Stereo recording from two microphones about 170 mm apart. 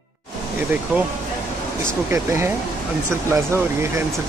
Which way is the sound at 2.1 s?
15° right (ahead or behind).